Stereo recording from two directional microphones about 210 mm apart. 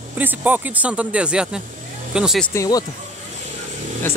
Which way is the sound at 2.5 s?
15° left (ahead or behind).